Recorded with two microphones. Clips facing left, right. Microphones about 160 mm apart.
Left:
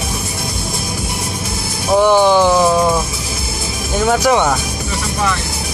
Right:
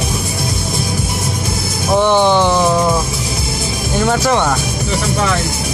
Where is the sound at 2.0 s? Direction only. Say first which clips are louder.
Left 2 dB; 5° left (ahead or behind).